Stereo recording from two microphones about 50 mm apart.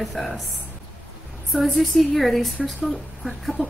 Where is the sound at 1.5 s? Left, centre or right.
Centre.